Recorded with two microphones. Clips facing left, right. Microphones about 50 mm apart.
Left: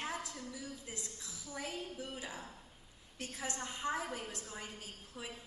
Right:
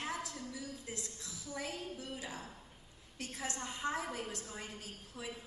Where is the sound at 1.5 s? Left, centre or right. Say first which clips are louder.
Right 1 dB; left.